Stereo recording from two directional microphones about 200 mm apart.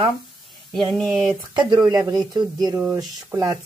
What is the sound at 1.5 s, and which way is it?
Speech, 20° right (ahead or behind).